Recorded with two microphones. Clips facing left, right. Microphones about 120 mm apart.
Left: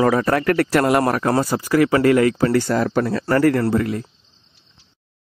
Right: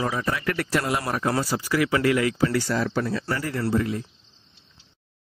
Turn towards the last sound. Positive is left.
turn(degrees=60)  # may be behind; listen again after turning